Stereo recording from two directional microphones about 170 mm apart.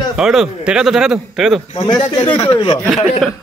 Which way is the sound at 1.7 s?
30° left (ahead or behind).